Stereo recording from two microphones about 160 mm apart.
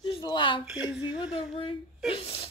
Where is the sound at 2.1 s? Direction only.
35° left (ahead or behind).